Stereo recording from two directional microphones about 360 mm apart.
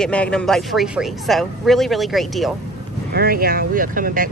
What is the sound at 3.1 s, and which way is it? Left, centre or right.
Speech, right.